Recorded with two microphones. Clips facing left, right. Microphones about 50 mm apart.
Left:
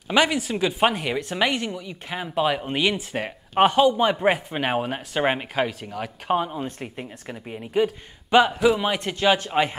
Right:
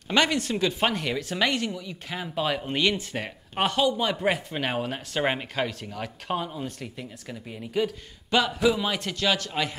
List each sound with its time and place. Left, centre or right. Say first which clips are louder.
0.1 s speech: left 3 dB; centre; by 7.3 s left
7.4 s a man's voice: left 5 dB; left